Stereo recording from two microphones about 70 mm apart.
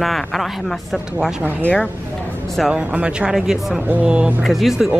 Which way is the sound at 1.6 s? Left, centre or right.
Centre.